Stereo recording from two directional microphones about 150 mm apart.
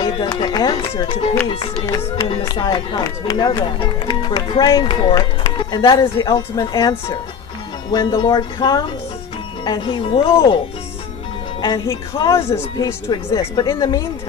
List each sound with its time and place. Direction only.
0.0 s speech: 30° left (ahead or behind)
2.4 s speech: 25° left (ahead or behind)
11.6 s speech: 25° left (ahead or behind)